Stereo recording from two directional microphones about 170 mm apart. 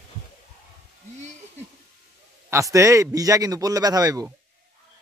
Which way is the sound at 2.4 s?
20° right (ahead or behind).